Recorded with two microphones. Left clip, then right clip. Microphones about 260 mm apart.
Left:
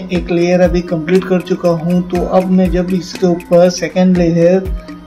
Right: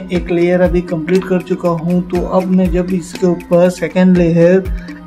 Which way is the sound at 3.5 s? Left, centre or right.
Centre.